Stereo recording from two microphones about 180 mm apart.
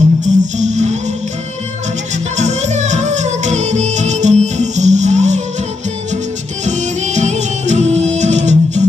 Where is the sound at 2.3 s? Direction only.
40° right (ahead or behind).